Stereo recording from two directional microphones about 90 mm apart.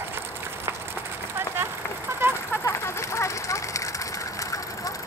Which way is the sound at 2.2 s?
25° right (ahead or behind).